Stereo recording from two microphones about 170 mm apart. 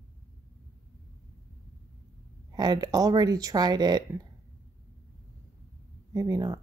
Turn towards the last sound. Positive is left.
turn(degrees=-20)  # may be behind; listen again after turning